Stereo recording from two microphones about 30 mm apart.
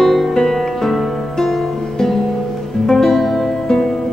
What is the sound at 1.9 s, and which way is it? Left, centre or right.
Music, centre.